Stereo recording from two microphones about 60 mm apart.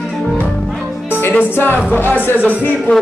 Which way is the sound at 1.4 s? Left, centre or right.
Left.